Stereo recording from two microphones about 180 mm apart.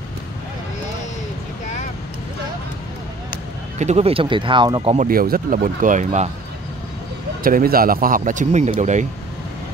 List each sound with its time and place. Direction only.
3.8 s speech: 35° right (ahead or behind)
4.9 s speech: 50° right (ahead or behind)
7.4 s speech: 55° right (ahead or behind)